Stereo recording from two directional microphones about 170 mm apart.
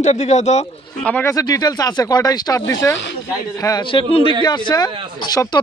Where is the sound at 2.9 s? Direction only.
90° left.